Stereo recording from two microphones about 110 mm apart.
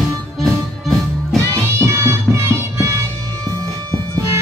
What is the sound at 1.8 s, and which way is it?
Music, 25° right (ahead or behind).